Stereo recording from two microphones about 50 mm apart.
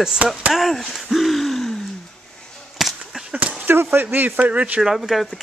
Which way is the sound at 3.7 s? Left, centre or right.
Right.